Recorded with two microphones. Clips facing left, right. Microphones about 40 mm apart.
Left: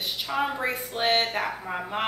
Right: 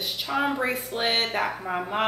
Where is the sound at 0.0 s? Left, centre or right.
Centre.